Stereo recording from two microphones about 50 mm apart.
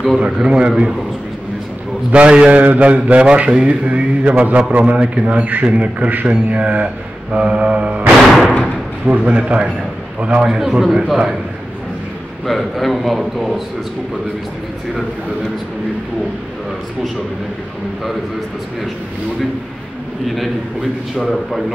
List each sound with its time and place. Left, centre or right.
0.4 s a man's voice: centre
2.1 s a man's voice: right
8.2 s a man's voice: centre
9.0 s a man's voice: right
10.2 s a man's voice: centre
12.4 s a man's voice: centre
21.3 s a man's voice: centre